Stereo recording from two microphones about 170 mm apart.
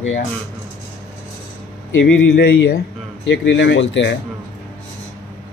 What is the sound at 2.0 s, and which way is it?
Speech, 90° left.